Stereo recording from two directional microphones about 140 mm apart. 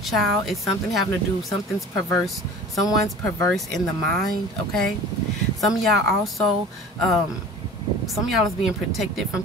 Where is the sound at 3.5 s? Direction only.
Centre (ahead or behind).